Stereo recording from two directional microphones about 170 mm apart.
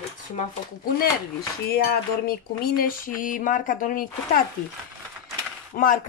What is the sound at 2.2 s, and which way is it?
Speech, 60° left (ahead or behind).